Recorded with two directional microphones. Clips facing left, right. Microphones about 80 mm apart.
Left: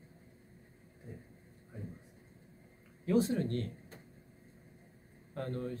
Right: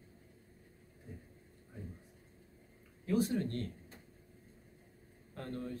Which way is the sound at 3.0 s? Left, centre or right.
Left.